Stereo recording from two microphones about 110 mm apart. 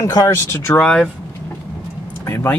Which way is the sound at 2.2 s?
25° left (ahead or behind).